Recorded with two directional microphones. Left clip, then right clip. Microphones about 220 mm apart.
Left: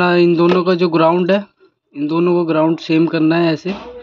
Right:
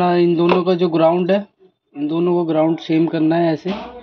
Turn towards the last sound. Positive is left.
turn(degrees=15)  # may be behind; listen again after turning